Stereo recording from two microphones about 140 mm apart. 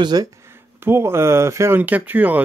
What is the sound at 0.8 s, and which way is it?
Speech, 15° right (ahead or behind).